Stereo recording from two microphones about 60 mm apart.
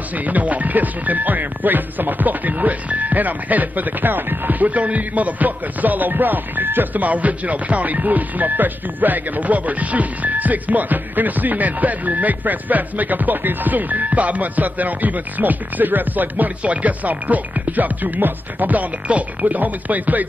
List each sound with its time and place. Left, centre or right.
0.1 s speech: right